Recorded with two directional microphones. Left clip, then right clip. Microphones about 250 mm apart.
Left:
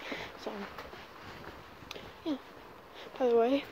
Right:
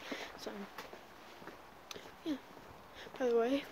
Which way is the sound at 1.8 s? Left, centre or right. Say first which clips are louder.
Left 4 dB; centre.